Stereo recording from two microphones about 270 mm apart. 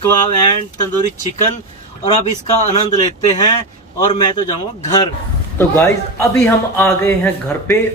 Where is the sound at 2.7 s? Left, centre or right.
Left.